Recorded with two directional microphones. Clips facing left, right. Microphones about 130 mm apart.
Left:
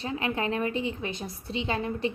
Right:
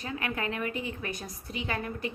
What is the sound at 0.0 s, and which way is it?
A woman's voice, 25° left (ahead or behind).